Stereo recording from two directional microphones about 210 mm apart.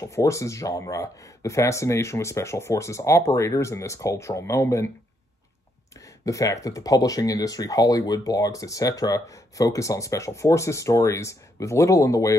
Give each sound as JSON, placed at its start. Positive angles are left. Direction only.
{"t": 0.0, "sound": "speech", "side_deg": 15}
{"t": 6.2, "sound": "speech", "side_deg": 15}